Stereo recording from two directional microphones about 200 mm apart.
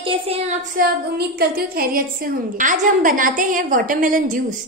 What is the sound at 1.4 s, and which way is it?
A woman's voice, 50° right (ahead or behind).